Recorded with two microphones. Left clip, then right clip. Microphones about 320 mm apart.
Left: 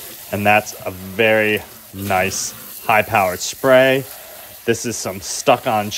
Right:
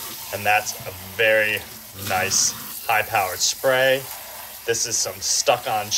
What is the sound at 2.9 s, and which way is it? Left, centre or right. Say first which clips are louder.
Speech: left 6 dB; centre.